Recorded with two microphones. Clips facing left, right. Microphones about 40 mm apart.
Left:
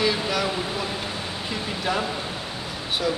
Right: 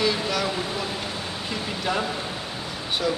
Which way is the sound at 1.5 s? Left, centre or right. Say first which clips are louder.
Left 1 dB; centre.